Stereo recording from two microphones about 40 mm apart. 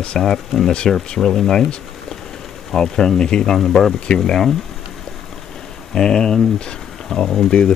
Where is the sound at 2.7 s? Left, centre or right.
Centre.